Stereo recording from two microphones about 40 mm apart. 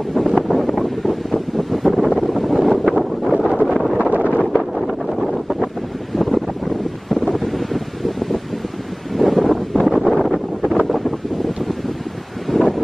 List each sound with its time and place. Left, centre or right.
0.1 s wind noise: centre
4.0 s a sound: right
4.4 s wind noise: centre
9.1 s wind: centre
9.5 s wind noise: centre
12.4 s a sound: centre